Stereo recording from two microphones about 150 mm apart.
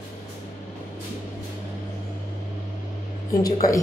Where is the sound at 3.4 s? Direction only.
25° left (ahead or behind).